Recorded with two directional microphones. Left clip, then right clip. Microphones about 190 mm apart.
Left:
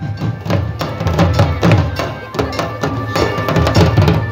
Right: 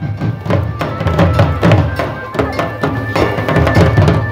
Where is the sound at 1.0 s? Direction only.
35° left (ahead or behind).